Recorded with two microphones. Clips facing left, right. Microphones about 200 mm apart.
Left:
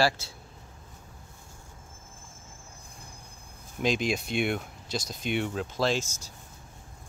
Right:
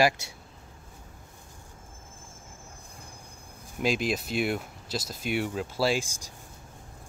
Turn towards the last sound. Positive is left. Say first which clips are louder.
# right 1 dB
turn(degrees=-15)  # may be behind; listen again after turning